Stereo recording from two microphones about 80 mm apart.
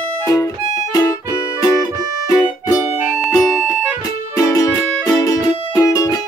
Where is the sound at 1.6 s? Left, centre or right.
Left.